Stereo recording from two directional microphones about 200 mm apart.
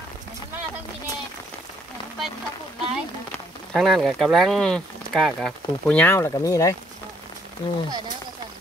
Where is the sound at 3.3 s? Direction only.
Centre (ahead or behind).